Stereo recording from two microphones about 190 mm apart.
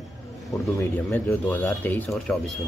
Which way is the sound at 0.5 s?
10° left (ahead or behind).